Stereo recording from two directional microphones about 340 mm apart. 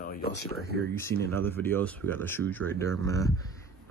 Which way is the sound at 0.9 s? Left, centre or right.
Centre.